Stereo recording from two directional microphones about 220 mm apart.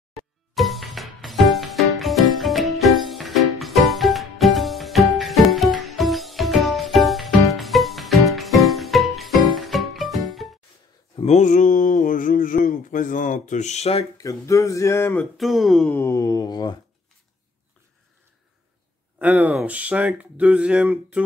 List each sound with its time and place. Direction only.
0.1 s music: centre (ahead or behind)
11.1 s a sound: 30° left (ahead or behind)
14.1 s speech: 15° left (ahead or behind)
15.3 s speech: centre (ahead or behind); by 16.7 s 20° left (ahead or behind)
19.1 s speech: 5° right (ahead or behind)